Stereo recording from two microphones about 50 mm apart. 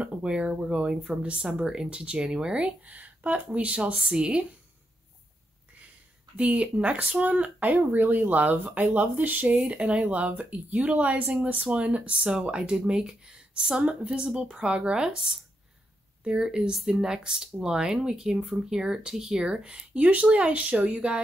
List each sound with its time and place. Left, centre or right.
0.0 s speech: right
6.3 s speech: right
9.6 s speech: right
16.7 s speech: centre; by 21.2 s right